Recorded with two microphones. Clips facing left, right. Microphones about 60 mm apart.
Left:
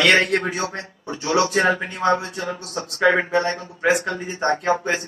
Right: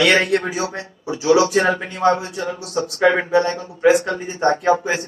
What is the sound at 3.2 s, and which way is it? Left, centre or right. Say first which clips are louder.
Speech: right 3 dB; left.